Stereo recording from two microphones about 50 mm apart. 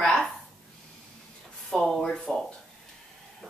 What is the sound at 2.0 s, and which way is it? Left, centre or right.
Speech, centre.